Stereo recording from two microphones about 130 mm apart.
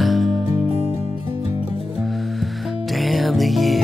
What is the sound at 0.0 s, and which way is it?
Music, centre (ahead or behind).